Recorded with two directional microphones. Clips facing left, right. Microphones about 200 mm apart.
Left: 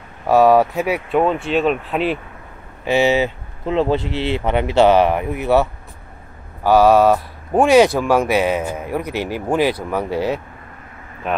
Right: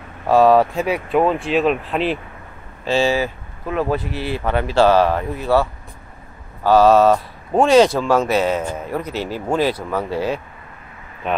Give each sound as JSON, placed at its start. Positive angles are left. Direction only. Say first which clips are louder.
{"t": 0.3, "sound": "speech", "louder": "even", "side_deg": 15}
{"t": 2.8, "sound": "speech", "louder": "left 2 dB", "side_deg": 20}
{"t": 11.3, "sound": "speech", "louder": "even", "side_deg": 5}